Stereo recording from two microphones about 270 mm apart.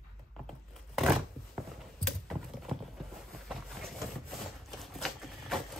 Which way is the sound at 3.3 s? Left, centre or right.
Centre.